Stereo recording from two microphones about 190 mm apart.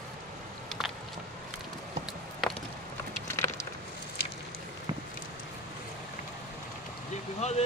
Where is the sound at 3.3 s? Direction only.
15° left (ahead or behind).